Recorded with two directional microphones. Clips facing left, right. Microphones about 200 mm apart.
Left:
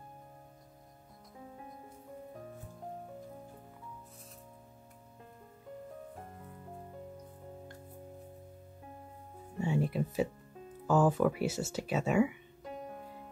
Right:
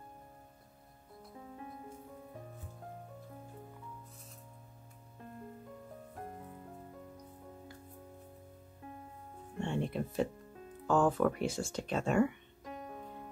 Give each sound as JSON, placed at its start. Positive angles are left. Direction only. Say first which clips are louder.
{"t": 9.6, "sound": "music", "louder": "left 3 dB", "side_deg": 5}
{"t": 10.9, "sound": "speech", "louder": "left 1 dB", "side_deg": 5}